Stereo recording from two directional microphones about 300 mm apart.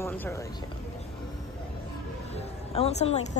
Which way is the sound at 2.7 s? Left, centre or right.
Left.